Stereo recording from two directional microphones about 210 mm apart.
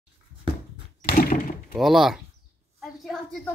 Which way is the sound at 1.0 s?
40° left (ahead or behind).